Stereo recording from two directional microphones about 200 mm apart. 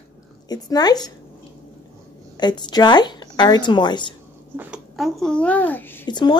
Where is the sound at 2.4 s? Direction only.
20° left (ahead or behind).